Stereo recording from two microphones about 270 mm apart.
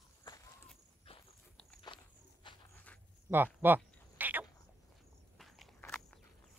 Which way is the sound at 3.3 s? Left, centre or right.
Centre.